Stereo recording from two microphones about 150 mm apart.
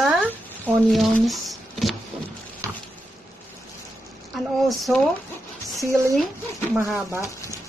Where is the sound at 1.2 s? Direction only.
Centre (ahead or behind).